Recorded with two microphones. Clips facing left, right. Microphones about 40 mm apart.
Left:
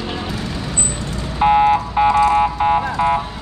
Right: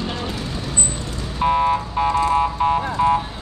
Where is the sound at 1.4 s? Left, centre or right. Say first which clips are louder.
Left 5 dB; left.